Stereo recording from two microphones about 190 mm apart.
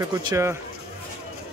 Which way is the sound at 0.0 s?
20° right (ahead or behind).